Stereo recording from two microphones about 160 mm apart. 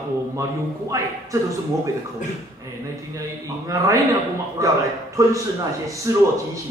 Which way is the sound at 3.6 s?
20° right (ahead or behind).